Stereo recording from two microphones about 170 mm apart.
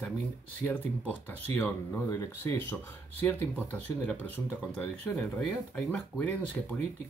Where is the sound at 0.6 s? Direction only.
10° left (ahead or behind).